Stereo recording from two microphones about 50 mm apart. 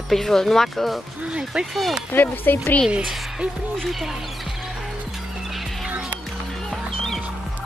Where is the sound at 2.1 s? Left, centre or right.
Left.